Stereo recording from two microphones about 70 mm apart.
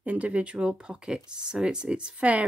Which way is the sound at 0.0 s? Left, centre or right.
Right.